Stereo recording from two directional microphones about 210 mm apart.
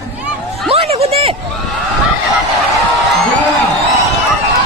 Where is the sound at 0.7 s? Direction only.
25° right (ahead or behind).